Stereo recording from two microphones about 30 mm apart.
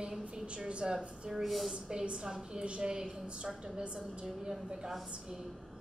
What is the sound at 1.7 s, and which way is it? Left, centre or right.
Speech, right.